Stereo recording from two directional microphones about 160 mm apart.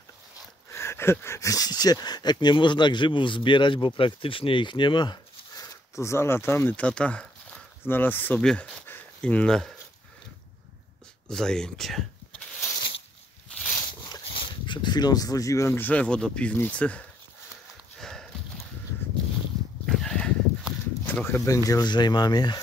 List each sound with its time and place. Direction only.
0.7 s speech: 15° left (ahead or behind)
11.2 s speech: 5° left (ahead or behind)
14.3 s speech: 30° left (ahead or behind); by 17.0 s 10° left (ahead or behind)
17.9 s horse: 5° left (ahead or behind)
19.9 s a sound: 5° left (ahead or behind); by 22.6 s 25° left (ahead or behind)